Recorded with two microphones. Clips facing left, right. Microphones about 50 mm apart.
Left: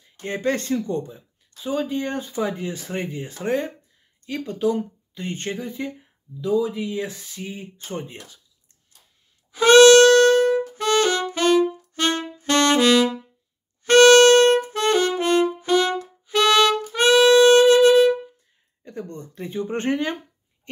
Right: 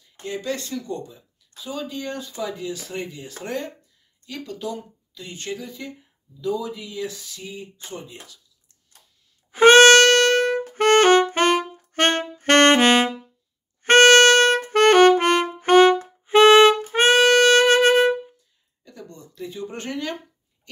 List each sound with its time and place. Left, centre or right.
0.0 s speech: left
3.4 s speech: centre; by 8.2 s left
9.5 s music: right
18.9 s speech: left